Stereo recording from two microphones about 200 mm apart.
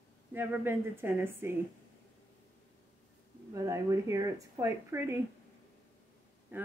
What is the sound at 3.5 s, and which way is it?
A woman's voice, 15° right (ahead or behind).